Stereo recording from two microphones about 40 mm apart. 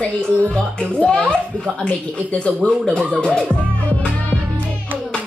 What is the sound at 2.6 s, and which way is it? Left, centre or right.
Speech, left.